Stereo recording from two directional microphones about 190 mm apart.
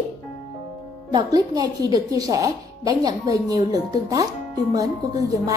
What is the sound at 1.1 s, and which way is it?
A woman's voice, 20° right (ahead or behind).